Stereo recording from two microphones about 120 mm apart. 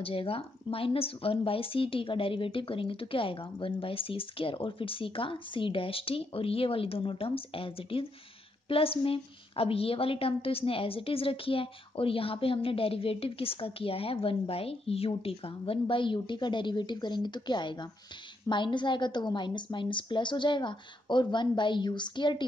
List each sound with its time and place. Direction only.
0.0 s a woman's voice: 50° left (ahead or behind)